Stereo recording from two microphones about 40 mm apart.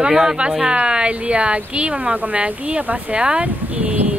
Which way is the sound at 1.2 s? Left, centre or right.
Right.